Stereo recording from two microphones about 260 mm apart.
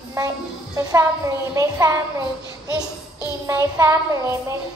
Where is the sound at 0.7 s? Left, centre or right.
Centre.